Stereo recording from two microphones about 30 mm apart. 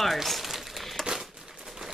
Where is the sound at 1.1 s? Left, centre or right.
Centre.